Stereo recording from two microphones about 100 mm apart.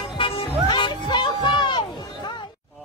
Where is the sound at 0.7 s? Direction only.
50° left (ahead or behind).